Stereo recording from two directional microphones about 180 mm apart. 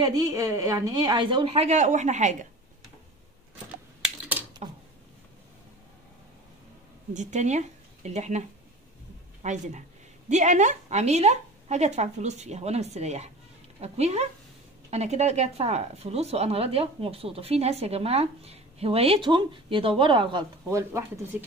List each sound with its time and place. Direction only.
0.0 s a woman's voice: 20° right (ahead or behind); by 2.3 s 40° right (ahead or behind)
4.0 s typewriter: 10° right (ahead or behind)
7.2 s speech: 40° right (ahead or behind); by 21.5 s 15° right (ahead or behind)